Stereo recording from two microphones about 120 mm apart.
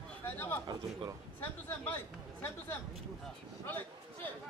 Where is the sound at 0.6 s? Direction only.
35° right (ahead or behind).